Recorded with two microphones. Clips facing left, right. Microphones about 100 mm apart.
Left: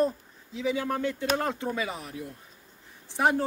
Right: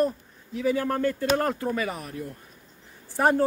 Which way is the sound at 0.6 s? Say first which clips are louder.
Right 4 dB; 10° left (ahead or behind).